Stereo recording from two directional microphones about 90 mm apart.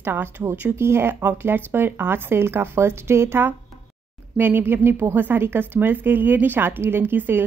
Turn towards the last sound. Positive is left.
turn(degrees=-25)  # may be behind; listen again after turning